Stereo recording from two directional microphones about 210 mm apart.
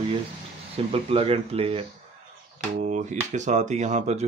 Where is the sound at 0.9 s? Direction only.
25° right (ahead or behind).